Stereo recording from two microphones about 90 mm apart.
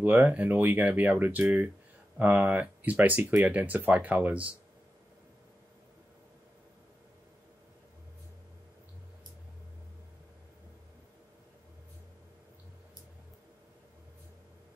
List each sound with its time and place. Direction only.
0.0 s speech: 20° right (ahead or behind)